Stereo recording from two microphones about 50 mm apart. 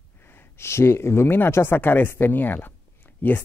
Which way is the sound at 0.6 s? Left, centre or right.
Left.